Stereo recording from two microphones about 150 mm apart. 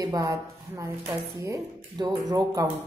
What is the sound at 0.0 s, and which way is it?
A woman's voice, 20° right (ahead or behind).